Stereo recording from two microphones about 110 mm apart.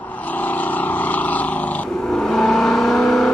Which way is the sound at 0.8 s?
15° left (ahead or behind).